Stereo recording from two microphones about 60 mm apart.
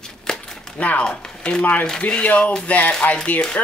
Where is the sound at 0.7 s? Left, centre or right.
Left.